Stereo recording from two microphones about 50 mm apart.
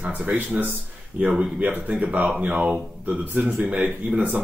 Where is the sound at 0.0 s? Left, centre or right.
Right.